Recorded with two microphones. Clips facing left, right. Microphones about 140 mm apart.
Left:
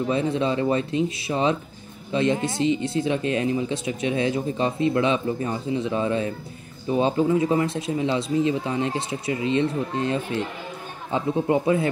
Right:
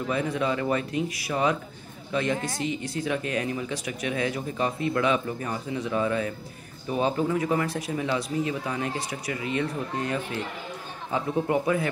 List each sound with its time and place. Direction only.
0.0 s speech: 25° left (ahead or behind)